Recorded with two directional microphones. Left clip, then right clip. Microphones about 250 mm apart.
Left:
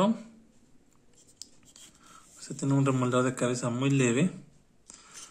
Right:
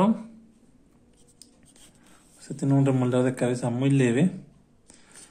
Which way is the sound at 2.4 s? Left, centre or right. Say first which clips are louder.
Right 4 dB; centre.